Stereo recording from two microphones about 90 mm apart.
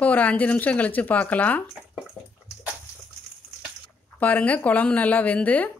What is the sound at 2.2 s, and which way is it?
Bathtub, 5° right (ahead or behind).